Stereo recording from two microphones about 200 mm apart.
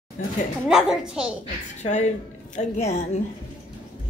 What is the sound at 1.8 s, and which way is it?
A woman's voice, 35° left (ahead or behind).